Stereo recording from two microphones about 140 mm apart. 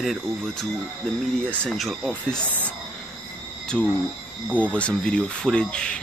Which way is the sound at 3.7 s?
5° left (ahead or behind).